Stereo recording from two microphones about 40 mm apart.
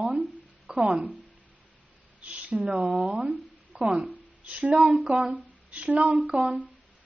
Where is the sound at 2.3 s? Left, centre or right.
Right.